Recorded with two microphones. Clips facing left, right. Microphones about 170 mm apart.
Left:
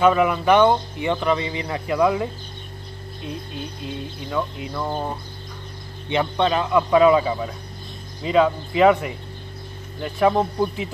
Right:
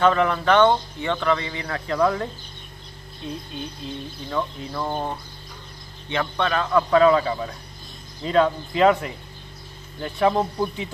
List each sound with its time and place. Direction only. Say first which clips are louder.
0.0 s speech: left 2 dB; 10° left (ahead or behind)
3.8 s speech: left 2 dB; 5° left (ahead or behind)
6.0 s speech: left 4 dB; 20° left (ahead or behind)